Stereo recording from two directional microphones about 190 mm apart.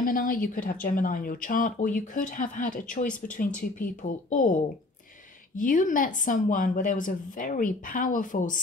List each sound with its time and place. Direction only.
0.0 s speech: 45° left (ahead or behind)
5.6 s speech: 45° left (ahead or behind)